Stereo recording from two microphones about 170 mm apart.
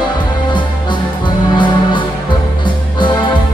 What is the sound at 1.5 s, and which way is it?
Music, 30° left (ahead or behind).